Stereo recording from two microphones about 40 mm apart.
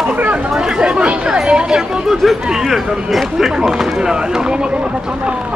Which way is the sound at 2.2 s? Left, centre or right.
Centre.